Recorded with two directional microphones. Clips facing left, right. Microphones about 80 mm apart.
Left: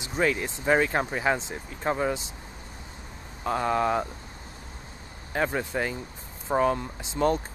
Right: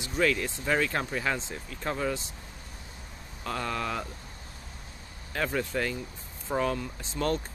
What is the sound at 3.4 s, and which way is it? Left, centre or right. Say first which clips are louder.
Speech: left 7 dB; left.